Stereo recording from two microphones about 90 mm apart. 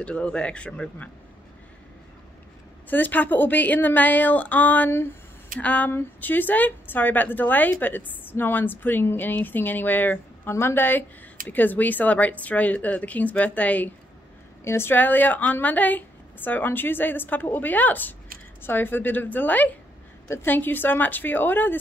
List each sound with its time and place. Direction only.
0.0 s speech: 10° left (ahead or behind)
2.9 s speech: 20° left (ahead or behind)
14.6 s speech: 25° left (ahead or behind)